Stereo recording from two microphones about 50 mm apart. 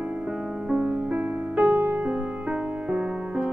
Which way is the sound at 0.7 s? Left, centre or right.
Right.